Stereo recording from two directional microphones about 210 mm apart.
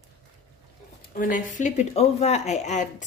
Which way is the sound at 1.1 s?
40° left (ahead or behind).